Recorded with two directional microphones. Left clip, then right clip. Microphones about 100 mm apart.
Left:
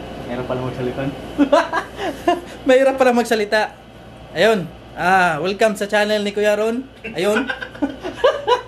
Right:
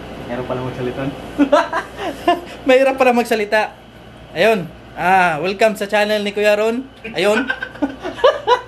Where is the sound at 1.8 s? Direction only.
15° left (ahead or behind).